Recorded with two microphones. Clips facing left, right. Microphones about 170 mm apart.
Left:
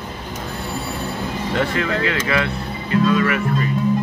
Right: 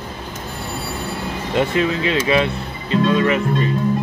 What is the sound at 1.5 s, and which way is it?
Speech, 20° right (ahead or behind).